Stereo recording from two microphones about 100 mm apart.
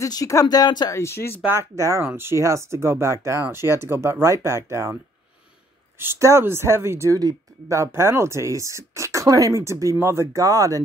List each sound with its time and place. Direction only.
0.0 s speech: 35° left (ahead or behind)
0.9 s speech: 25° left (ahead or behind)
1.4 s speech: 25° right (ahead or behind)
5.9 s speech: 25° right (ahead or behind)